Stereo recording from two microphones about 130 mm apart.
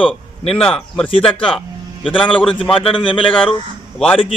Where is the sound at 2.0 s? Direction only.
40° left (ahead or behind).